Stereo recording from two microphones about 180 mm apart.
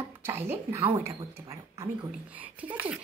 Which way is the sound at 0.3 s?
15° right (ahead or behind).